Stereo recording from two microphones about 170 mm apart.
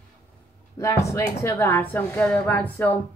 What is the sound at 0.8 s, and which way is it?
A woman's voice, 15° left (ahead or behind).